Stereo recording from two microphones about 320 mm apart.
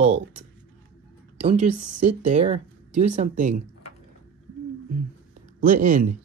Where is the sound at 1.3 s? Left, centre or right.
Right.